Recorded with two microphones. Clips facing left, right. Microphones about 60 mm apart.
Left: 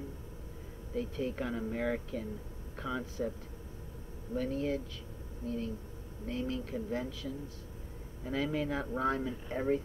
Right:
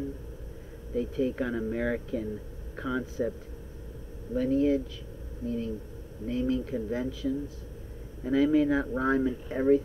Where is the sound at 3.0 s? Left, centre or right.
Centre.